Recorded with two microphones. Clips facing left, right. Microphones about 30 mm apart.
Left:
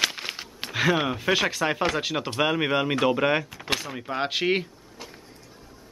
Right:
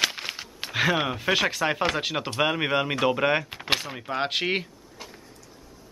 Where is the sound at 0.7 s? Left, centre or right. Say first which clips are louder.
Left 1 dB; centre.